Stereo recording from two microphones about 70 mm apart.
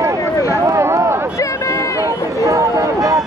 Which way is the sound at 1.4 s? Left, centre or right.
Left.